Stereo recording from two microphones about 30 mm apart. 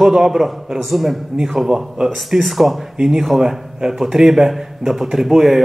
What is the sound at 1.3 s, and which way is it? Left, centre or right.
Speech, centre.